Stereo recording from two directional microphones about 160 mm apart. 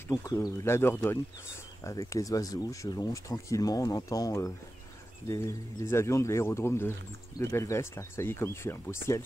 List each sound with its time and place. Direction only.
0.1 s speech: 20° left (ahead or behind)